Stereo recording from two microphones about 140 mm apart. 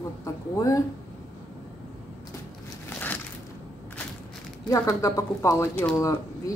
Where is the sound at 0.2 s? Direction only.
25° left (ahead or behind).